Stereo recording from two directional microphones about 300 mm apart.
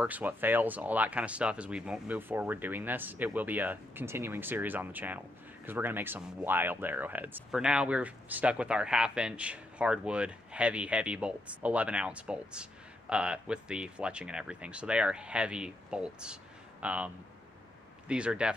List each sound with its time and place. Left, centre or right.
0.0 s speech: centre